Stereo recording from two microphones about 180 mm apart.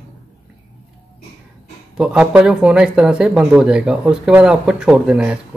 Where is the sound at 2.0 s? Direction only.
5° right (ahead or behind).